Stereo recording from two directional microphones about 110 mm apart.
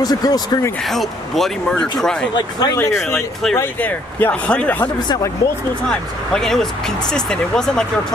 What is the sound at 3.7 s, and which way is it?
Speech, 15° left (ahead or behind).